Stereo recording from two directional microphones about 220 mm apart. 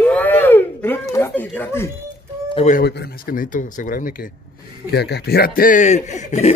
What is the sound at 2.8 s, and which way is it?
Speech, 45° left (ahead or behind).